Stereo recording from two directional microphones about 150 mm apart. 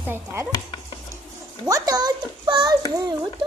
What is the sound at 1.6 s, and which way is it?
A child's voice, 25° right (ahead or behind).